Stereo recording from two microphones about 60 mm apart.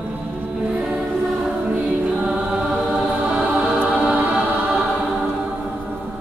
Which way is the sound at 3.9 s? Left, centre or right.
Right.